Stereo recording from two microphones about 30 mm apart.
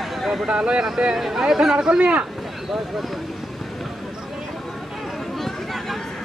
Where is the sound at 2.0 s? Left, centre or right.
Right.